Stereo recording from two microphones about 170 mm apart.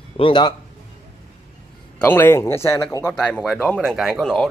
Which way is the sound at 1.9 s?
10° left (ahead or behind).